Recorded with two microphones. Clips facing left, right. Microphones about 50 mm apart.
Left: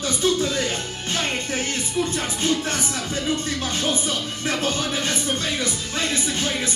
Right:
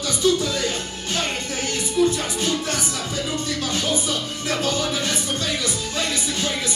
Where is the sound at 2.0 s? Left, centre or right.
Left.